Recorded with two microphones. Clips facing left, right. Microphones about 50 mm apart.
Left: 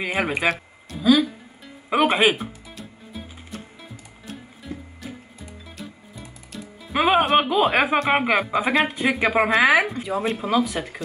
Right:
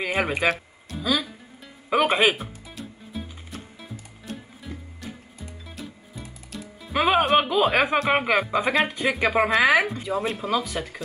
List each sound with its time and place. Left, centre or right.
0.1 s music: centre
7.7 s speech: centre